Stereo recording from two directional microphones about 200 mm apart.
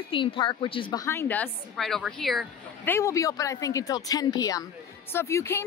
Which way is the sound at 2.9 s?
15° left (ahead or behind).